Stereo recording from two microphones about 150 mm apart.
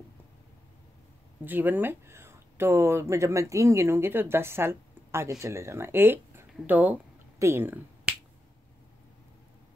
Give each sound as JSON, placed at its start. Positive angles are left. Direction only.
{"t": 1.4, "sound": "speech", "side_deg": -10}